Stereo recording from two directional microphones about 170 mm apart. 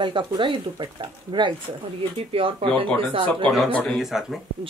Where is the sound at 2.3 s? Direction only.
35° right (ahead or behind).